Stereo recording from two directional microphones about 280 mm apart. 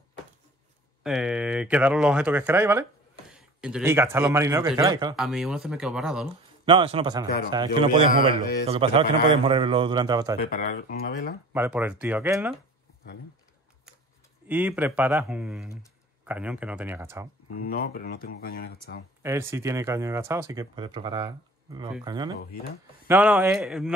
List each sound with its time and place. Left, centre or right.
1.0 s speech: centre
5.1 s speech: centre
6.6 s a man's voice: centre
10.4 s speech: left
11.5 s speech: centre
14.5 s speech: centre
17.6 s speech: left
19.2 s speech: centre